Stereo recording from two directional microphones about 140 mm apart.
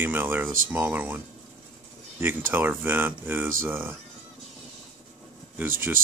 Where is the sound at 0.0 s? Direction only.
15° right (ahead or behind).